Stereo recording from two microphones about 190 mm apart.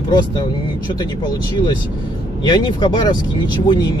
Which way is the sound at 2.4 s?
25° left (ahead or behind).